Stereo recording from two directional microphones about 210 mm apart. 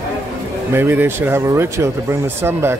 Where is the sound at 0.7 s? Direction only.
10° right (ahead or behind).